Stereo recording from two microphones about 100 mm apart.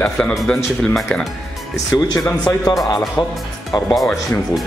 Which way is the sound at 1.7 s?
35° left (ahead or behind).